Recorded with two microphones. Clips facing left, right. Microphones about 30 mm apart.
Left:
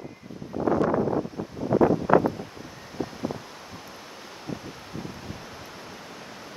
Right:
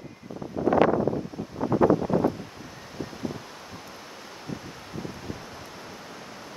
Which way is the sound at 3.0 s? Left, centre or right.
Centre.